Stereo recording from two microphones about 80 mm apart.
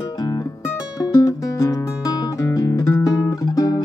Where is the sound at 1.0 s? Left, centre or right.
Left.